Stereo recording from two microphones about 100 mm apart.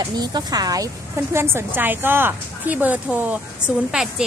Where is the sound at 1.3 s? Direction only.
25° right (ahead or behind).